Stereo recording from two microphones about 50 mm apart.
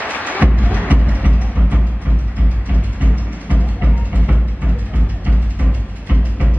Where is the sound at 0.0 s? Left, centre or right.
Left.